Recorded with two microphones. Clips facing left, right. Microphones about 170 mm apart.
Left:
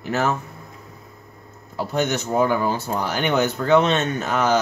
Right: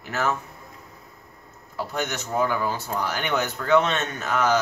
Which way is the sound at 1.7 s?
25° left (ahead or behind).